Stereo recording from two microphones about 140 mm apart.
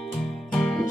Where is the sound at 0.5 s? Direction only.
5° left (ahead or behind).